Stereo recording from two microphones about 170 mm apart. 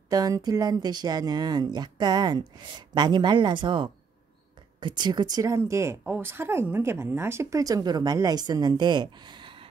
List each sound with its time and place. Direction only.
0.1 s speech: 20° right (ahead or behind)